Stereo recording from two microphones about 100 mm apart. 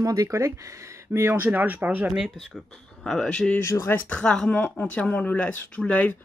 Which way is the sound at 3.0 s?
5° left (ahead or behind).